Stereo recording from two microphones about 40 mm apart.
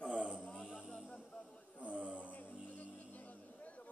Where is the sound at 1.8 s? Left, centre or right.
Right.